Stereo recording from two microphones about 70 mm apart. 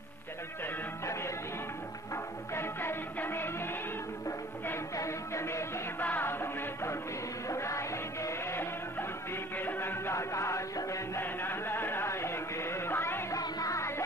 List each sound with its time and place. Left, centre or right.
2.5 s music: left
4.9 s music: left
5.9 s music: left
9.6 s music: left
10.1 s music: left
11.1 s music: left
13.3 s music: left
13.7 s music: left